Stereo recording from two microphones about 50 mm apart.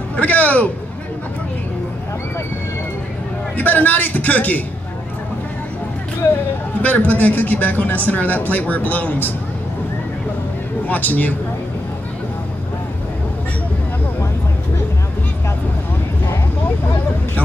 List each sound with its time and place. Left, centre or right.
0.1 s a man's voice: left
3.5 s speech: left
6.8 s speech: left
10.9 s speech: left